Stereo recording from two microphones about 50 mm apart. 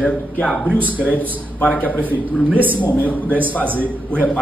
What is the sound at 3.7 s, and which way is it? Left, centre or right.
Speech, right.